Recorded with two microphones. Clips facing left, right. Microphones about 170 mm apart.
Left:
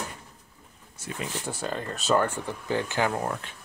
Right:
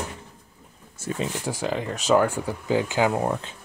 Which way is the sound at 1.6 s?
10° right (ahead or behind).